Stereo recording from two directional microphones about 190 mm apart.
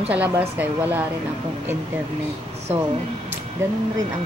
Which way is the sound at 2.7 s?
10° right (ahead or behind).